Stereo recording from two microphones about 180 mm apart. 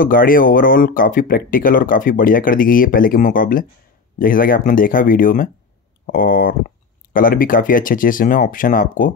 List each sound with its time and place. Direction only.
0.0 s speech: 50° left (ahead or behind)